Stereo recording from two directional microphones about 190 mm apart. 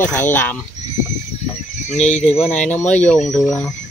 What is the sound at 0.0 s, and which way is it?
Speech, 10° left (ahead or behind).